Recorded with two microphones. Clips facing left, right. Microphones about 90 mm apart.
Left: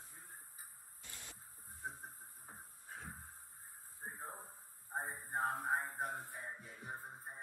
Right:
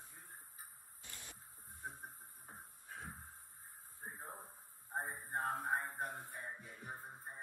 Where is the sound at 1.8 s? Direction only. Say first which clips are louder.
Left 2 dB; 15° right (ahead or behind).